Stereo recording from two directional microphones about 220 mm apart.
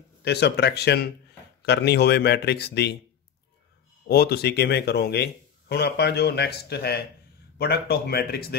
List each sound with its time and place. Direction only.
0.2 s speech: 50° left (ahead or behind)
4.1 s speech: 45° left (ahead or behind)